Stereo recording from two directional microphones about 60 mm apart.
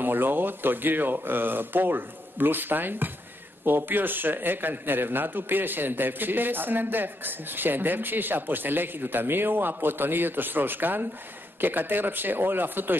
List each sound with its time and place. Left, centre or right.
0.0 s a man's voice: right